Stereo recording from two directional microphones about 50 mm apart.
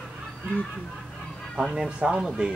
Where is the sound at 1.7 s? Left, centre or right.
Centre.